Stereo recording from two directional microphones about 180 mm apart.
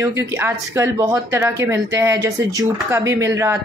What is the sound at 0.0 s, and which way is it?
A woman's voice, 15° right (ahead or behind).